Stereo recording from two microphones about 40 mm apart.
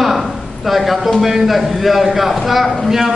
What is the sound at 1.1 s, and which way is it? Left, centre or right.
A man's voice, centre.